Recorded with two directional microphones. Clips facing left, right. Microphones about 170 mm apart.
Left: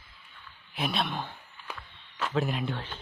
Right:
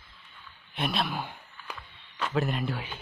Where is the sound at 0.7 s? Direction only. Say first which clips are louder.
Right 1 dB; centre (ahead or behind).